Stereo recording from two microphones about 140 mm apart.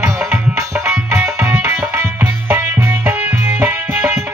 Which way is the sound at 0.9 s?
10° right (ahead or behind).